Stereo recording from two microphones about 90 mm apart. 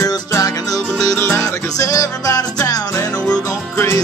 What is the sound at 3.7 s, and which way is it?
Music, 30° left (ahead or behind).